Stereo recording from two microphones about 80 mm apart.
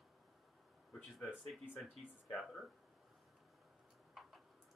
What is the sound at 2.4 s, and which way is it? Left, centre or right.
Speech, centre.